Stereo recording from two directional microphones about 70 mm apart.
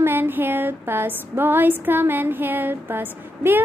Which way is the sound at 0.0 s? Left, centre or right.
Right.